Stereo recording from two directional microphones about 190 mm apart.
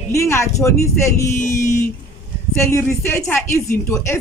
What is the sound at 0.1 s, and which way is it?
Speech, 15° left (ahead or behind).